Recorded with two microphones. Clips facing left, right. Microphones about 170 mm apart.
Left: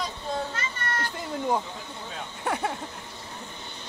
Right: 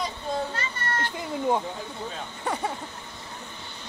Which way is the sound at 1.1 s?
Centre (ahead or behind).